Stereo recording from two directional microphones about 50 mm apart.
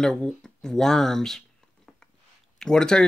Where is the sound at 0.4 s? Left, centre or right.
Centre.